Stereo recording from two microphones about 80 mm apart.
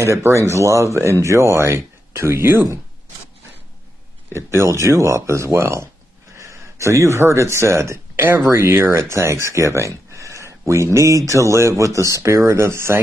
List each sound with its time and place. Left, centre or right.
0.0 s speech: right
4.3 s speech: right